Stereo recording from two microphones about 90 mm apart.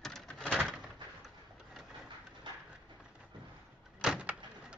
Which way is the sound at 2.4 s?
60° right (ahead or behind).